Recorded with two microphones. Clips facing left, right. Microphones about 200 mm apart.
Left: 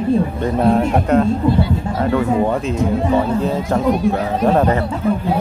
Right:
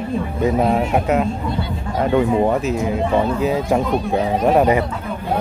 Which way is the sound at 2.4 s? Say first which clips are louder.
Even; 5° right (ahead or behind).